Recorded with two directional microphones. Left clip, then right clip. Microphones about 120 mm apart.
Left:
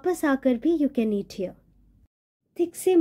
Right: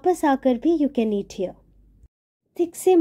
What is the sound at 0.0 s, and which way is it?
A woman's voice, 5° right (ahead or behind).